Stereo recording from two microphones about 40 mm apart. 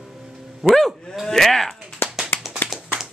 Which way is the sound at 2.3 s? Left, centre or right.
Left.